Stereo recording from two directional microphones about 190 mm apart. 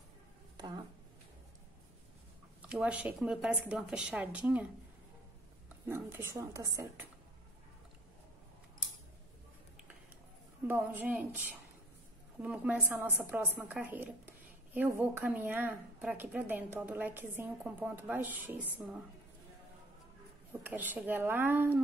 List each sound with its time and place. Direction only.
0.6 s a sound: 20° right (ahead or behind)
2.6 s a woman's voice: 5° right (ahead or behind)
5.9 s a woman's voice: 10° right (ahead or behind)
10.7 s a woman's voice: 10° right (ahead or behind)
20.6 s a woman's voice: 10° right (ahead or behind)